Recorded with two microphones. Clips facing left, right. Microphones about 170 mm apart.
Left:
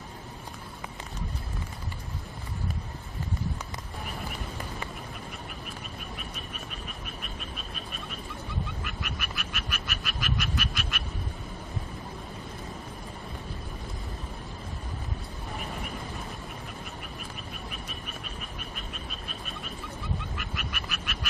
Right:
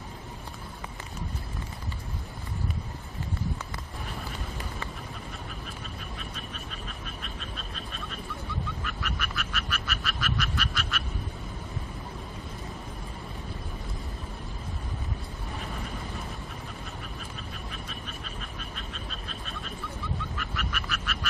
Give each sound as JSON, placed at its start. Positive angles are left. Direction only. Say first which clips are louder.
{"t": 8.8, "sound": "frog", "louder": "right 2 dB", "side_deg": 15}
{"t": 20.3, "sound": "frog", "louder": "right 2 dB", "side_deg": 15}